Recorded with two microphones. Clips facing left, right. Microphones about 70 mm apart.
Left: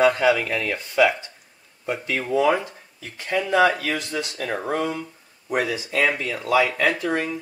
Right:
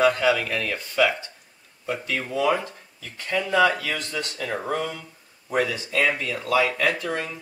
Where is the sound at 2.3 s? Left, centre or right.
Centre.